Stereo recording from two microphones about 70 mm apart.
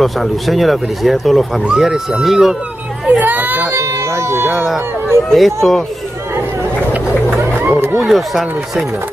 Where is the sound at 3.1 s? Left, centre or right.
Right.